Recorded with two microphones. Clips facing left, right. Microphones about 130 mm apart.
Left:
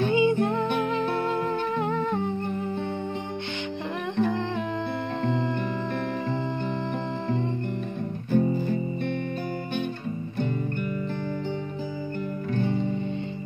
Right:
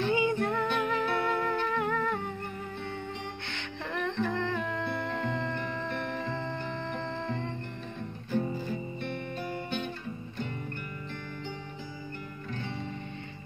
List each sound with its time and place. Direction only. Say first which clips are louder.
0.1 s music: left 6 dB; 20° left (ahead or behind)
4.0 s humming: left 5 dB; 20° left (ahead or behind)
5.2 s music: left 6 dB; 20° left (ahead or behind)